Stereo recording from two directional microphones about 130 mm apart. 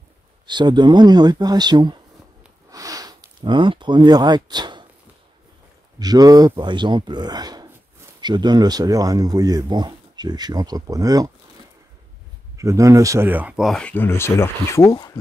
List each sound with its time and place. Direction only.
0.5 s speech: 35° right (ahead or behind)
5.9 s speech: 30° right (ahead or behind)
12.5 s speech: 25° right (ahead or behind)
13.3 s speech: 10° right (ahead or behind)
13.7 s speech: 10° left (ahead or behind)